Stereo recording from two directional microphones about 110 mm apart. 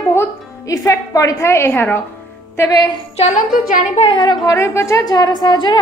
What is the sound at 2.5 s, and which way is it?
Speech, 30° left (ahead or behind).